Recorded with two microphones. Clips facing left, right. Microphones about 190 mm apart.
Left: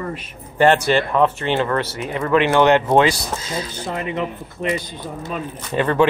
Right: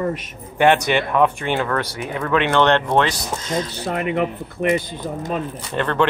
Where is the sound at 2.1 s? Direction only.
Centre (ahead or behind).